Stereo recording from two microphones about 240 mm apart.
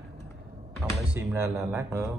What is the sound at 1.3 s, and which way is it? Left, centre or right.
Speech, centre.